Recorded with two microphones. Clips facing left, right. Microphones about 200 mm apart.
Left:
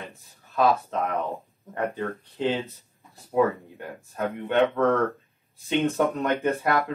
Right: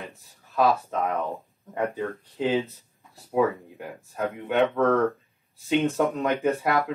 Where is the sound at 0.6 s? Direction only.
Centre (ahead or behind).